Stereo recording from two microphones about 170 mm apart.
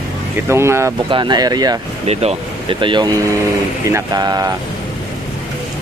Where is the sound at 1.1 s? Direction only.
25° right (ahead or behind).